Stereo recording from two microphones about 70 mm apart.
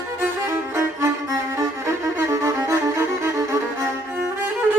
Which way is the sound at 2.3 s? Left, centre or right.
Right.